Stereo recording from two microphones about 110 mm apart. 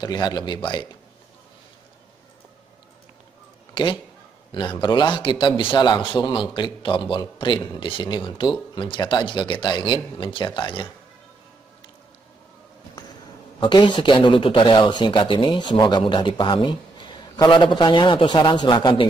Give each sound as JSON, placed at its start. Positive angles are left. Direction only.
{"t": 0.0, "sound": "a man's voice", "side_deg": 35}
{"t": 3.7, "sound": "a man's voice", "side_deg": 45}
{"t": 13.6, "sound": "a man's voice", "side_deg": 45}